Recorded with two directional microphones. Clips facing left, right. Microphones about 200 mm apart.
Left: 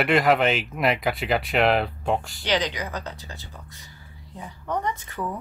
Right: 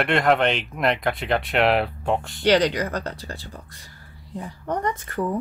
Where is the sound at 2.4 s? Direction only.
60° right (ahead or behind).